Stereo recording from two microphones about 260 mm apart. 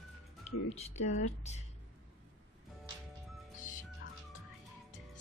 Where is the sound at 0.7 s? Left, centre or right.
Left.